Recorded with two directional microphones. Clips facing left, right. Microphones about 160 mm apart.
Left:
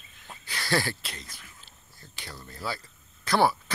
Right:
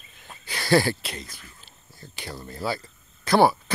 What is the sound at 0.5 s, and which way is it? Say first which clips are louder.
Speech: right 8 dB; 15° right (ahead or behind).